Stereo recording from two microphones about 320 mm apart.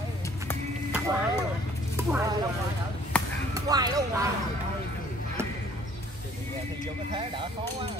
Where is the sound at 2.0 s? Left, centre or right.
Centre.